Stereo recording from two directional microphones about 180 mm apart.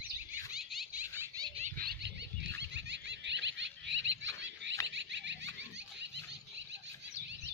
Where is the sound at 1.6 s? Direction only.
55° right (ahead or behind).